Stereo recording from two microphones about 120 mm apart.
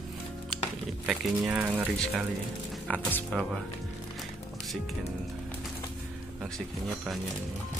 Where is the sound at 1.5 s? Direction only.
15° right (ahead or behind).